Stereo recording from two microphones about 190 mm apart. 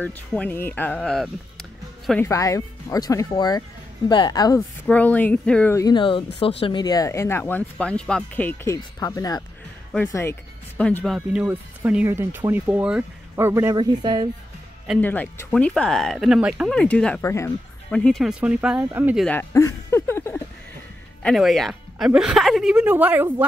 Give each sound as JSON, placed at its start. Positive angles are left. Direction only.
{"t": 0.0, "sound": "speech", "side_deg": 10}
{"t": 2.2, "sound": "speech", "side_deg": 15}
{"t": 4.8, "sound": "a woman's voice", "side_deg": 10}
{"t": 11.1, "sound": "speech", "side_deg": -5}
{"t": 15.0, "sound": "a woman's voice", "side_deg": 10}
{"t": 16.7, "sound": "speech", "side_deg": 5}
{"t": 17.9, "sound": "a woman's voice", "side_deg": 5}
{"t": 19.1, "sound": "a sound", "side_deg": 5}
{"t": 21.2, "sound": "a woman's voice", "side_deg": 0}